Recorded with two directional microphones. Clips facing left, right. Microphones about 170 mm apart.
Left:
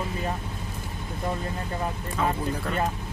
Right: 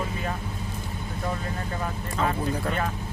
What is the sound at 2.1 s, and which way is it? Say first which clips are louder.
Speech: right 1 dB; 5° left (ahead or behind).